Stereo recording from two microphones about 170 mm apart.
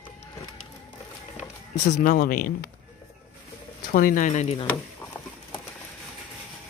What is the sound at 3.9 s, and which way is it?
Speech, 55° left (ahead or behind).